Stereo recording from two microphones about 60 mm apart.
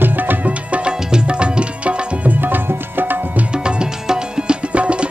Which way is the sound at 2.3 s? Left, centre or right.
Right.